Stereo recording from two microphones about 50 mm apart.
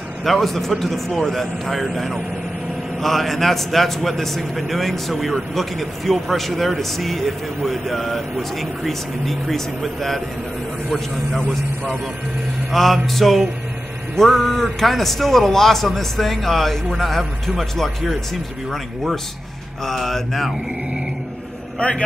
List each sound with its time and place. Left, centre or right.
0.2 s a man's voice: centre
19.9 s a man's voice: centre
21.7 s a man's voice: left